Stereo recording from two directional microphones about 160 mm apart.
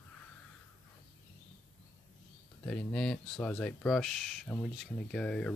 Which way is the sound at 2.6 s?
5° left (ahead or behind).